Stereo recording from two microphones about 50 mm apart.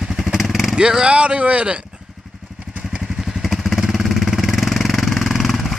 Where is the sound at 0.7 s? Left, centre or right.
Centre.